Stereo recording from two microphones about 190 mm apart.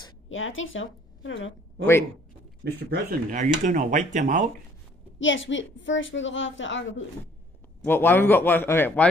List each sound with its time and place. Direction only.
0.3 s a woman's voice: 90° left
2.6 s a man's voice: 60° right (ahead or behind)
3.3 s speech: 40° right (ahead or behind)
5.2 s a woman's voice: 85° left
7.8 s speech: 10° left (ahead or behind)